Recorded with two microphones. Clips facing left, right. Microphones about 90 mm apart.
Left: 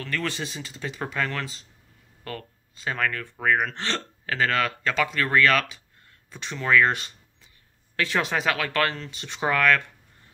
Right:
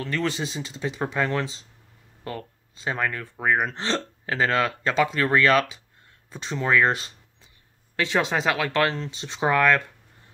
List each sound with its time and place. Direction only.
0.0 s speech: 20° right (ahead or behind)
7.9 s speech: 20° right (ahead or behind)